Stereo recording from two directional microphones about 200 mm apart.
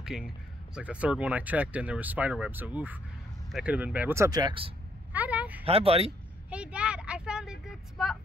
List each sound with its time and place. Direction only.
0.0 s speech: 5° right (ahead or behind); by 4.7 s 25° right (ahead or behind)
5.1 s a sound: 5° right (ahead or behind)
5.7 s speech: 30° right (ahead or behind)
6.5 s vehicle: 5° right (ahead or behind)